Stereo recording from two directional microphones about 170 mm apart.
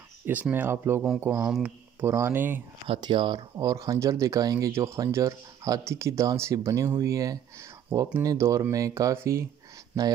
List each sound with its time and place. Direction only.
0.2 s speech: 10° right (ahead or behind)
2.9 s speech: 30° right (ahead or behind)